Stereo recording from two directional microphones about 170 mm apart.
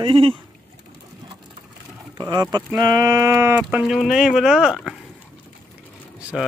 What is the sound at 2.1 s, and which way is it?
Speech, 25° right (ahead or behind).